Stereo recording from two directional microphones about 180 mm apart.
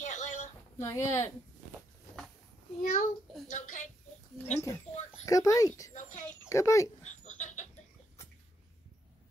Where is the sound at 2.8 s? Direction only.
45° left (ahead or behind).